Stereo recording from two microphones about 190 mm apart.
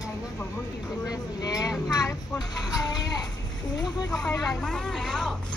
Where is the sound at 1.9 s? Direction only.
20° left (ahead or behind).